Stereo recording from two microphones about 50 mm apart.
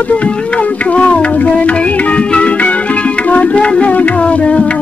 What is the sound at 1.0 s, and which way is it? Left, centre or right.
Music, centre.